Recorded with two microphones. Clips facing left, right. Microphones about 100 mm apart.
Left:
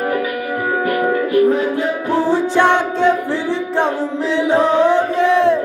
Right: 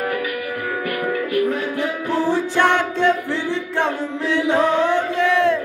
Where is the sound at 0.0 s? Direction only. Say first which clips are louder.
Left 4 dB; 25° left (ahead or behind).